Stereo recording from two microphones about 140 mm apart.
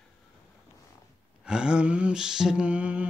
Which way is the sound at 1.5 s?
5° right (ahead or behind).